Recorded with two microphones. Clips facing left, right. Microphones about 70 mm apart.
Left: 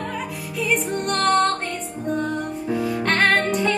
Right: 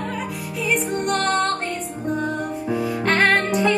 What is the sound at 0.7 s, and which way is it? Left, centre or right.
Music, centre.